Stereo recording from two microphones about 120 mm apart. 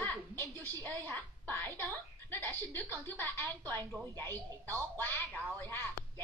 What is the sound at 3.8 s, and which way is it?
Speech, 30° right (ahead or behind).